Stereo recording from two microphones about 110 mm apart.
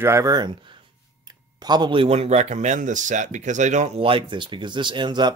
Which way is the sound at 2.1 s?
75° right (ahead or behind).